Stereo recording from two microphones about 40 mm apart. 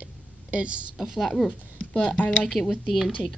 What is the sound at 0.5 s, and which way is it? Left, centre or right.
Speech, right.